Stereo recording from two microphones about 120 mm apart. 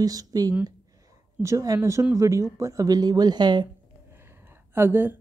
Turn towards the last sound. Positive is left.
turn(degrees=-20)  # may be behind; listen again after turning